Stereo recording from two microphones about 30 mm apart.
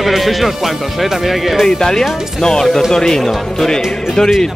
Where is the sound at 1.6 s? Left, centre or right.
Left.